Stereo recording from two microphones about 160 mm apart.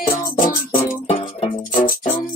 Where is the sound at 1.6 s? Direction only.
60° left (ahead or behind).